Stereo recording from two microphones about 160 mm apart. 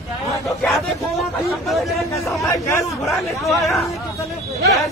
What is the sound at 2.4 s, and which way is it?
Speech, 20° left (ahead or behind).